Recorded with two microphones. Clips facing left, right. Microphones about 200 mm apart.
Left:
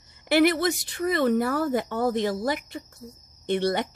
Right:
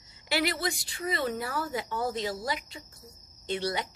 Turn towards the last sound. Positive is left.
turn(degrees=55)  # may be behind; listen again after turning